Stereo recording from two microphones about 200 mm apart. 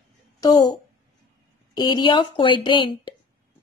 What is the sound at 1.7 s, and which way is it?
A woman's voice, 20° left (ahead or behind).